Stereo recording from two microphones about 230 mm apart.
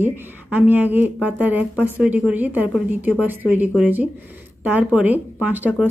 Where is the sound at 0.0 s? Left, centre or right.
Centre.